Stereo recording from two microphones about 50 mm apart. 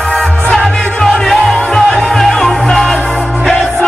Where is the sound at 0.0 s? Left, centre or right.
Centre.